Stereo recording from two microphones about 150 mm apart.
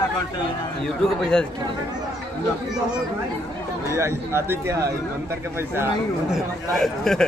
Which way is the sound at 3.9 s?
15° right (ahead or behind).